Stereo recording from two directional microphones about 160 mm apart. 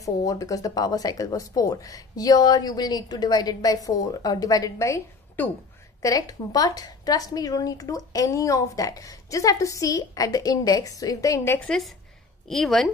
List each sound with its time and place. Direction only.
0.0 s a woman's voice: 20° left (ahead or behind)
12.4 s speech: centre (ahead or behind)